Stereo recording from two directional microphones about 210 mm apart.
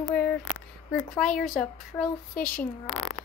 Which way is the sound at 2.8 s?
90° left.